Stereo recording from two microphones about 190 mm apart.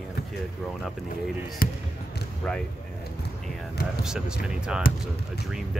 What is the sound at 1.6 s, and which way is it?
Speech, 50° left (ahead or behind).